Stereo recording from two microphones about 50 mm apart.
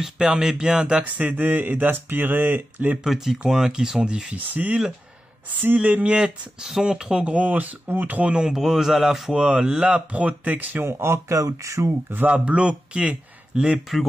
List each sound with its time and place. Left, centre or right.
0.0 s speech: centre
1.2 s speech: right
3.0 s speech: centre; by 4.7 s right
5.8 s speech: right
6.6 s speech: centre
7.2 s speech: right
8.3 s speech: centre
8.5 s speech: centre
9.3 s speech: centre; by 10.8 s right
10.8 s speech: right
12.3 s speech: right; by 14.0 s centre